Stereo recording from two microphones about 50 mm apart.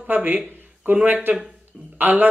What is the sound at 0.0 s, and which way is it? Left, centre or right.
Speech, right.